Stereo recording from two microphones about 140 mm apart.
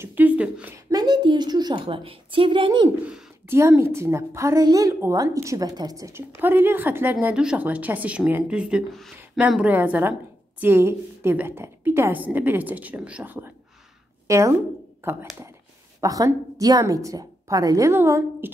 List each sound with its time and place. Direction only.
0.0 s a sound: 10° right (ahead or behind)
0.8 s a woman's voice: 30° right (ahead or behind)
3.4 s a woman's voice: 15° right (ahead or behind)
16.0 s a woman's voice: 25° right (ahead or behind)